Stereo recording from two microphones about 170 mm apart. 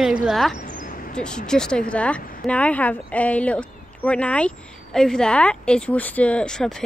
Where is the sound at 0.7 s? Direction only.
50° left (ahead or behind).